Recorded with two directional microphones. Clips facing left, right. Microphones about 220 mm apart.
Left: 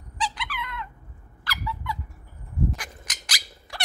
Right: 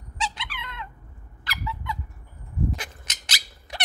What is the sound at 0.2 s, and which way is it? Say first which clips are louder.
Squeak: left 2 dB; 25° right (ahead or behind).